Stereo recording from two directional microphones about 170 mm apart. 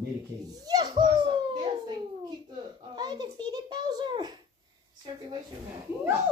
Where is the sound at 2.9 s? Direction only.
25° right (ahead or behind).